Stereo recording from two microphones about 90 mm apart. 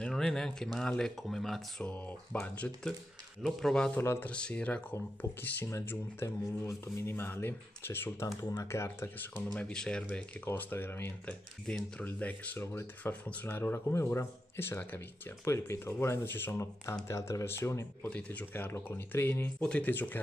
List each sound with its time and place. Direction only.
0.0 s speech: 5° left (ahead or behind)
1.9 s speech: 15° left (ahead or behind)
3.4 s speech: 5° left (ahead or behind)
3.9 s speech: 25° left (ahead or behind)
4.3 s speech: 10° left (ahead or behind)
5.4 s speech: 30° left (ahead or behind); by 10.0 s 10° left (ahead or behind)
10.0 s speech: 20° left (ahead or behind)
11.7 s speech: 10° left (ahead or behind)
13.6 s speech: 25° left (ahead or behind)
18.1 s speech: 20° left (ahead or behind)
19.6 s speech: 15° left (ahead or behind)